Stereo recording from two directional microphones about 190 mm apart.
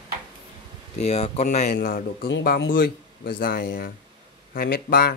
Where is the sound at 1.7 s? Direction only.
55° left (ahead or behind).